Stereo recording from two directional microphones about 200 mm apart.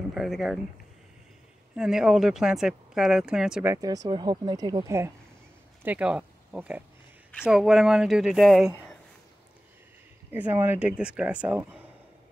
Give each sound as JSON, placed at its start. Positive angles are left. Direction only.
{"t": 0.1, "sound": "speech", "side_deg": 0}
{"t": 1.8, "sound": "speech", "side_deg": -5}
{"t": 3.7, "sound": "speech", "side_deg": -20}
{"t": 10.3, "sound": "speech", "side_deg": -10}